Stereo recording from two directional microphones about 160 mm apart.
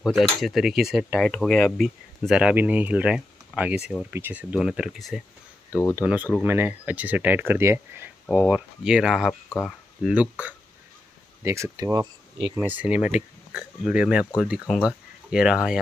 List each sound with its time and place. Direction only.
0.4 s speech: centre (ahead or behind); by 12.5 s 25° right (ahead or behind)
12.5 s speech: 10° right (ahead or behind)